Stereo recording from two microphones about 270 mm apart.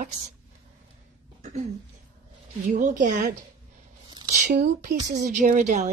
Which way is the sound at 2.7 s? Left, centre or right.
Right.